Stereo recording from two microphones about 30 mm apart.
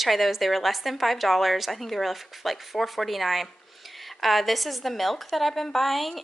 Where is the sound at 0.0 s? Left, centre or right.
Centre.